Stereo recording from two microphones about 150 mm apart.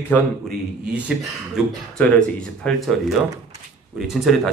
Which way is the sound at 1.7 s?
5° left (ahead or behind).